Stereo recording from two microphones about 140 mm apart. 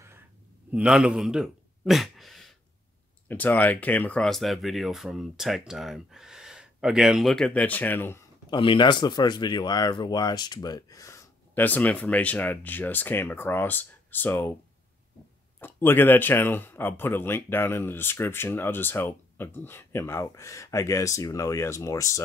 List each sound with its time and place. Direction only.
0.7 s a sound: 5° right (ahead or behind)
3.3 s speech: 10° left (ahead or behind)
8.5 s speech: 35° left (ahead or behind); by 14.5 s 15° left (ahead or behind)
15.6 s speech: 15° left (ahead or behind)